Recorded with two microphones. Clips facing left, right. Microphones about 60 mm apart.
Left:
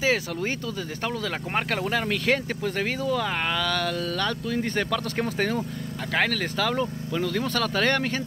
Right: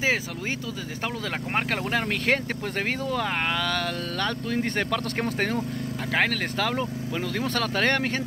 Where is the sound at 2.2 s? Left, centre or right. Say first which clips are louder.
Left 1 dB; right.